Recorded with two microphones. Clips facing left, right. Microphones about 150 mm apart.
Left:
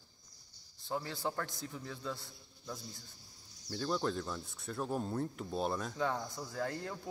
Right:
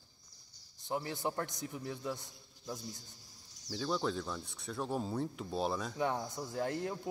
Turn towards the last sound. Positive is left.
turn(degrees=-20)  # may be behind; listen again after turning